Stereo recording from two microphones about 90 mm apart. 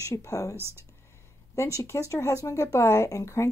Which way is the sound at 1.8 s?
35° left (ahead or behind).